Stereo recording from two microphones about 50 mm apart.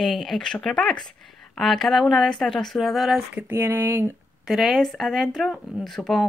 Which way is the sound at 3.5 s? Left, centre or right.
Right.